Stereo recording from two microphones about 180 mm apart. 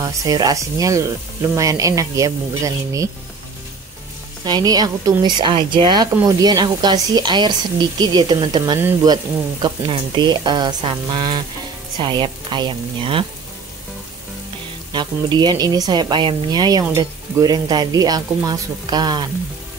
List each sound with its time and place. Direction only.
0.0 s speech: 20° right (ahead or behind)
4.5 s speech: 20° right (ahead or behind)
14.9 s speech: 25° right (ahead or behind)